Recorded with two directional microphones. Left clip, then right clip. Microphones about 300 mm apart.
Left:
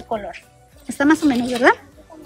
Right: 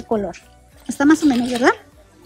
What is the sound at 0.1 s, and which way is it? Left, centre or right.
Speech, centre.